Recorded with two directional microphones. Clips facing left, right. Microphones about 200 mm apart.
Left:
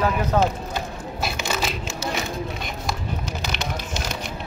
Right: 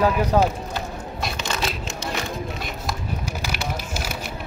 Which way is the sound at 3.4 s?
10° right (ahead or behind).